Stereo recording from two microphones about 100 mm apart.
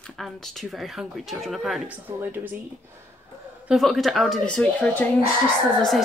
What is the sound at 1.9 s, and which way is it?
Speech, 20° right (ahead or behind).